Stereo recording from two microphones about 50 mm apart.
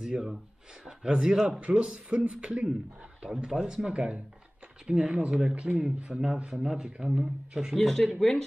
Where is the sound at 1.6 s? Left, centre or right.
Right.